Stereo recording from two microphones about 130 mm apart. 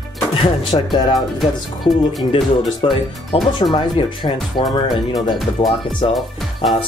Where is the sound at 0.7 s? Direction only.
40° left (ahead or behind).